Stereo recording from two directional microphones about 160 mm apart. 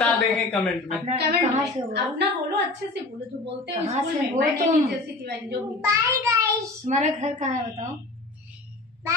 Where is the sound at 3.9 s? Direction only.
50° right (ahead or behind).